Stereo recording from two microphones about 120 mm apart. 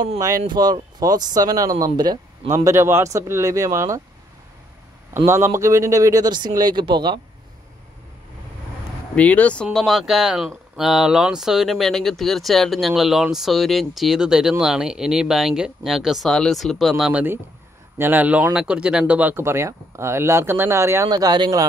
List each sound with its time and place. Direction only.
0.5 s speech: 35° right (ahead or behind)
2.6 s speech: 20° right (ahead or behind)
5.1 s speech: 25° right (ahead or behind); by 7.2 s 40° right (ahead or behind)
9.1 s speech: 10° left (ahead or behind); by 17.2 s 5° right (ahead or behind)
17.9 s speech: 15° right (ahead or behind)
21.1 s speech: 35° right (ahead or behind)